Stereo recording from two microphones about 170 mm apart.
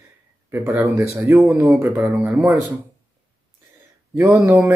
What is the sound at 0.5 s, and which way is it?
Speech, 15° right (ahead or behind).